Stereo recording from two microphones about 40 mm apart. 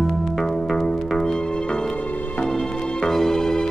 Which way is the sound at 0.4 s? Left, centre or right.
Centre.